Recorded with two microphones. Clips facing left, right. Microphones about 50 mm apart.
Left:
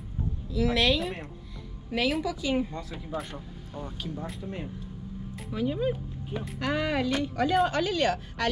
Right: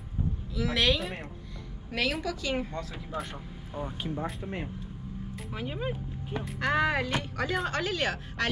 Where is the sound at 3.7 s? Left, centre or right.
Right.